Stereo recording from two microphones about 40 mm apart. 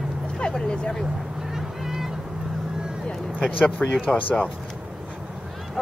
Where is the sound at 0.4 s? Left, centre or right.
Centre.